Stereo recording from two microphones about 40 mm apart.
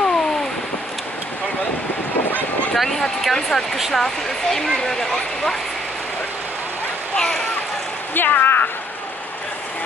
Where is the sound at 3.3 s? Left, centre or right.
Centre.